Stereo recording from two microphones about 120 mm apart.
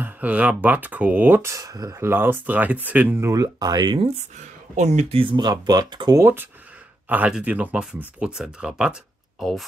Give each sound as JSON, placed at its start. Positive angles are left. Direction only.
{"t": 0.0, "sound": "speech", "side_deg": -10}
{"t": 4.7, "sound": "speech", "side_deg": -75}
{"t": 5.1, "sound": "speech", "side_deg": -45}
{"t": 7.1, "sound": "speech", "side_deg": -10}